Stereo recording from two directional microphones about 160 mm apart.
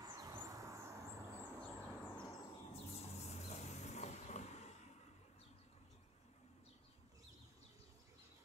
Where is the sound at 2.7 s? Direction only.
40° left (ahead or behind).